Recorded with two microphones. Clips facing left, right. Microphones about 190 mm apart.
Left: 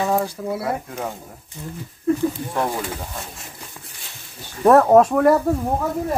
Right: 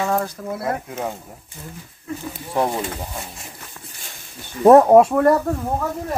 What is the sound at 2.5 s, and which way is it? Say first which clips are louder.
Speech: right 2 dB; 20° right (ahead or behind).